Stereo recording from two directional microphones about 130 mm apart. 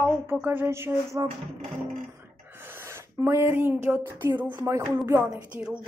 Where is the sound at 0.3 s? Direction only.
15° right (ahead or behind).